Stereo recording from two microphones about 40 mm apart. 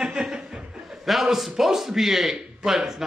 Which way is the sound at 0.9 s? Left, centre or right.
Centre.